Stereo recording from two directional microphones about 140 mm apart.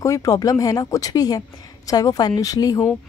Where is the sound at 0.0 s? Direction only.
25° left (ahead or behind).